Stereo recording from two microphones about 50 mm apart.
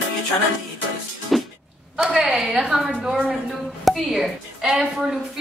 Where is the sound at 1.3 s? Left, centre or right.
Centre.